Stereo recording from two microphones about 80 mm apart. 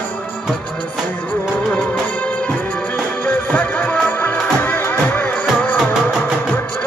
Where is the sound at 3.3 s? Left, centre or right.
Left.